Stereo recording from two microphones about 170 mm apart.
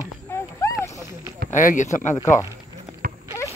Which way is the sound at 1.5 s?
50° left (ahead or behind).